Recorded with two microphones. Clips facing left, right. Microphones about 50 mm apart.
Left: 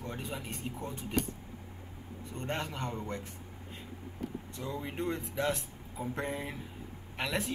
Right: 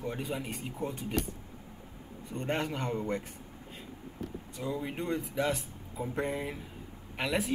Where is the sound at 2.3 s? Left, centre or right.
Centre.